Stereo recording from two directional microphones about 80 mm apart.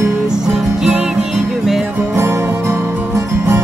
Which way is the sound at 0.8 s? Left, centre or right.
Centre.